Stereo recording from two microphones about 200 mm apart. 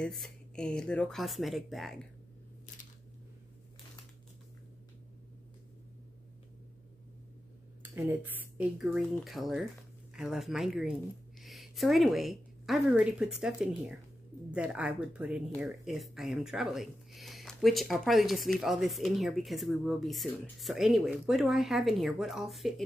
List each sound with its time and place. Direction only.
0.0 s speech: centre (ahead or behind)
7.9 s speech: 10° right (ahead or behind)